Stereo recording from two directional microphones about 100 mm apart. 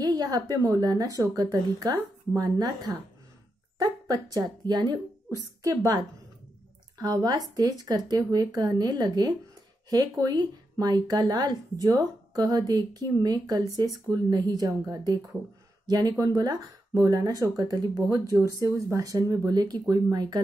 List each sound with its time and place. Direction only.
0.0 s speech: 35° right (ahead or behind)
7.0 s speech: 40° right (ahead or behind)